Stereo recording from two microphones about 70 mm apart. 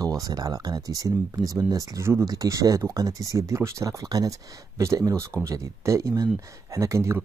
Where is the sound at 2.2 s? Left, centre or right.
Right.